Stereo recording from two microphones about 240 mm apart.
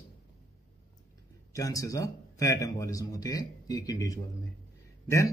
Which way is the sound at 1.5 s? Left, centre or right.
Centre.